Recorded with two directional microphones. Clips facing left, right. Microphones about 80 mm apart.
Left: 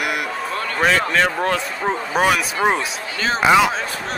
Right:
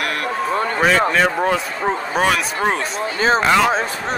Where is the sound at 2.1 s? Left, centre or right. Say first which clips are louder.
Left 2 dB; centre.